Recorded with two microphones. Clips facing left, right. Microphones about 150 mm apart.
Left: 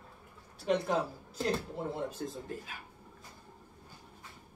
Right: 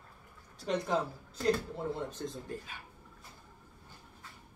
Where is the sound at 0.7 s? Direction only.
10° left (ahead or behind).